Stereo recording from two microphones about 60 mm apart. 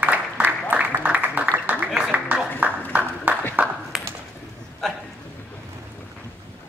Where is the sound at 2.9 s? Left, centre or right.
Right.